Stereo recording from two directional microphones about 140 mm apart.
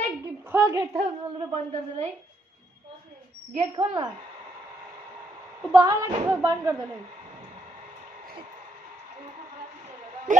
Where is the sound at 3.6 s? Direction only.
45° right (ahead or behind).